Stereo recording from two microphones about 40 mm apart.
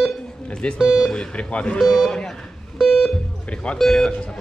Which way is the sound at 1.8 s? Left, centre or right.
Centre.